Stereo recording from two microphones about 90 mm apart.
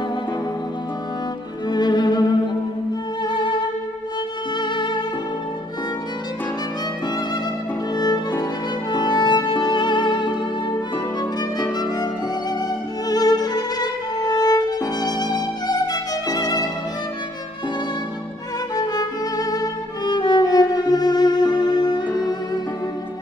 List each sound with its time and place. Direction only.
1.7 s music: 50° left (ahead or behind)
4.6 s music: 60° left (ahead or behind)
8.0 s music: 45° left (ahead or behind)
8.9 s music: 60° left (ahead or behind)
13.1 s violin: 45° left (ahead or behind)
18.8 s violin: 45° left (ahead or behind)